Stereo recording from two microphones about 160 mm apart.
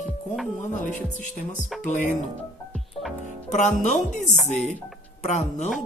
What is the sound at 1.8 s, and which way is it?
Speech, 50° left (ahead or behind).